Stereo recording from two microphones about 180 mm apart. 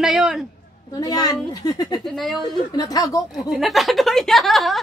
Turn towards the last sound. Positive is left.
turn(degrees=0)  # may be behind; listen again after turning